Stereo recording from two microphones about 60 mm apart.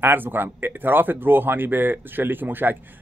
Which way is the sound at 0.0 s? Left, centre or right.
Right.